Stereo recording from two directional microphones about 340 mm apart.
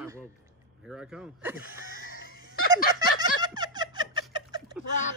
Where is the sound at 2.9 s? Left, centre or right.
Centre.